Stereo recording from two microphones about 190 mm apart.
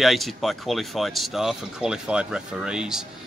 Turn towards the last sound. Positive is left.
turn(degrees=-5)  # may be behind; listen again after turning